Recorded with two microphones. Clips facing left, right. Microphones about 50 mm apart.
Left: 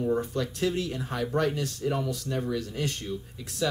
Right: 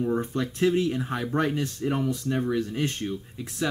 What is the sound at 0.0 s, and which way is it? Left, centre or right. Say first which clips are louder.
Speech: right 1 dB; right.